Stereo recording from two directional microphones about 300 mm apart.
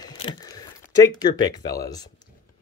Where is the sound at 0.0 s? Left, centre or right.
Centre.